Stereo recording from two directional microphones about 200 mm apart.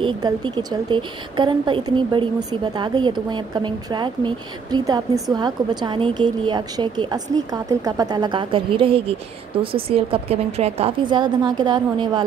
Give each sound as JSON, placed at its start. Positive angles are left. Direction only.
{"t": 0.0, "sound": "a woman's voice", "side_deg": -20}